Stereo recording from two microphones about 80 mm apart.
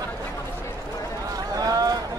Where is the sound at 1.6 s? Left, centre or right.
Right.